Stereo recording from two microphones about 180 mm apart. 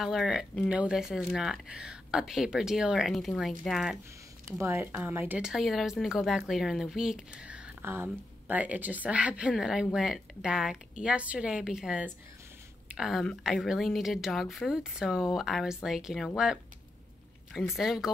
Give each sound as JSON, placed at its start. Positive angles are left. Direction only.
{"t": 0.0, "sound": "speech", "side_deg": 0}
{"t": 4.6, "sound": "speech", "side_deg": -10}
{"t": 17.7, "sound": "speech", "side_deg": 0}